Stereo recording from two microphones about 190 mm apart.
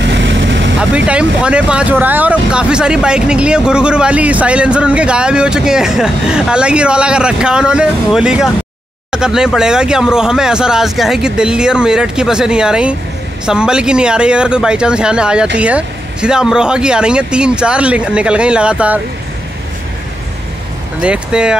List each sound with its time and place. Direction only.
0.0 s vehicle: 70° right (ahead or behind)
0.7 s speech: 5° right (ahead or behind)
21.0 s speech: 5° right (ahead or behind)